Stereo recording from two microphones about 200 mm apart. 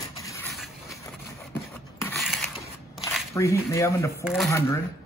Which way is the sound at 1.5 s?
10° left (ahead or behind).